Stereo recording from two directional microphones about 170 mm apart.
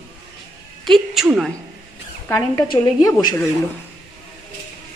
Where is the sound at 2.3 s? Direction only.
20° left (ahead or behind).